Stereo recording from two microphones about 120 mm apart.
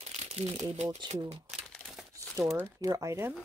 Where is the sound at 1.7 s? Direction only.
Centre (ahead or behind).